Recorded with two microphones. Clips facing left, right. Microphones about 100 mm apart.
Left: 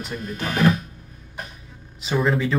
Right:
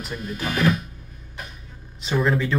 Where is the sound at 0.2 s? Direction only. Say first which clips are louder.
Left 2 dB; 40° left (ahead or behind).